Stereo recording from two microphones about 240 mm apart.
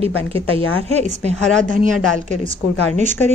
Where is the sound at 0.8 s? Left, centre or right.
Right.